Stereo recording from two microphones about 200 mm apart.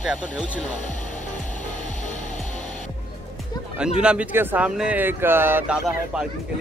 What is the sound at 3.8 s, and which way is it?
Speech, 5° right (ahead or behind).